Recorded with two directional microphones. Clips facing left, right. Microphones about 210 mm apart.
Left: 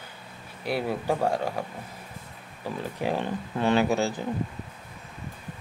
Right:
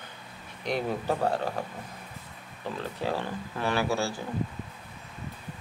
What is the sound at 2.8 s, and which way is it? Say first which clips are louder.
Speech: left 3 dB; 15° left (ahead or behind).